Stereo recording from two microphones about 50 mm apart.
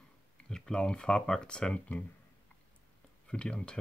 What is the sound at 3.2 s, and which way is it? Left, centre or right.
Speech, left.